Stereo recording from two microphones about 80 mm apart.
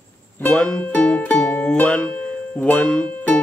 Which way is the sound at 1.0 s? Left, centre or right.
Centre.